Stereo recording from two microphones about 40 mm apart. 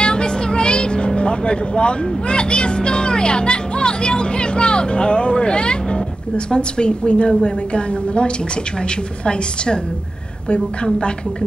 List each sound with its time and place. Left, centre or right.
0.0 s a woman's voice: left